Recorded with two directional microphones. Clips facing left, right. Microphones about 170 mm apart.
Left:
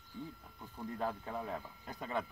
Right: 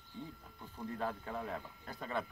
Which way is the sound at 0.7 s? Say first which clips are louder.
Left 1 dB; 15° left (ahead or behind).